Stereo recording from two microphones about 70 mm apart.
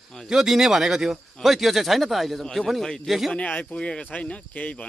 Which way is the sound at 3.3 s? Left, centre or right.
Centre.